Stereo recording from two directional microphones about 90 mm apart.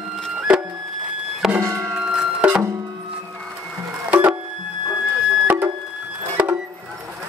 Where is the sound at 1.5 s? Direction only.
30° right (ahead or behind).